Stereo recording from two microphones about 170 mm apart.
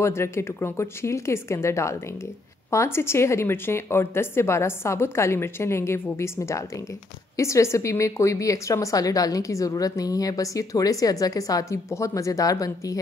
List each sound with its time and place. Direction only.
0.0 s a woman's voice: 15° left (ahead or behind)